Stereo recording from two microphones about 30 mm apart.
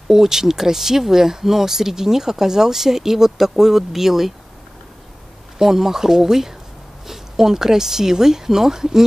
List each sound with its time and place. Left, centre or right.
0.1 s speech: centre
5.6 s speech: centre